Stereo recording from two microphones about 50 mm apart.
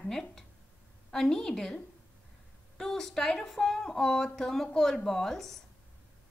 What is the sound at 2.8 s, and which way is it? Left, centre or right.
A woman's voice, centre.